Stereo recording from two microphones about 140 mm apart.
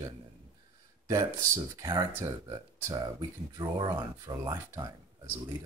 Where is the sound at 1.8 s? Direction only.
30° right (ahead or behind).